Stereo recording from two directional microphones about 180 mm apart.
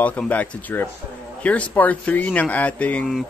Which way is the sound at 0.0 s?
10° left (ahead or behind).